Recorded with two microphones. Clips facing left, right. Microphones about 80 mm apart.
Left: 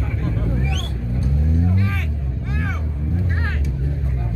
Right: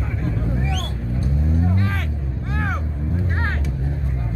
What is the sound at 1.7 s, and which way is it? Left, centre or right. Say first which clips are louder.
Music: even; right.